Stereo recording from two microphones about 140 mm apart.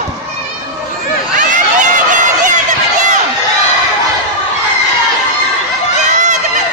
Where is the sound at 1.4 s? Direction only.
70° right (ahead or behind).